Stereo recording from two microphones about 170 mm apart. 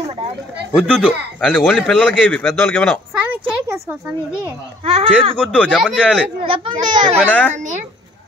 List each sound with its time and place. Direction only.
0.7 s a man's voice: 5° left (ahead or behind)
2.5 s speech: 10° left (ahead or behind)
3.3 s a sound: 15° right (ahead or behind)
4.8 s speech: 35° right (ahead or behind)
5.4 s a man's voice: 5° left (ahead or behind)
6.4 s a child's voice: 30° right (ahead or behind)